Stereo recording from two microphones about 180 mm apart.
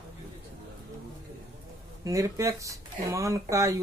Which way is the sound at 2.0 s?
15° right (ahead or behind).